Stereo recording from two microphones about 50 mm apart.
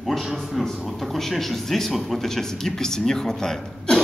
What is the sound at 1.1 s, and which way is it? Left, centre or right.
Speech, centre.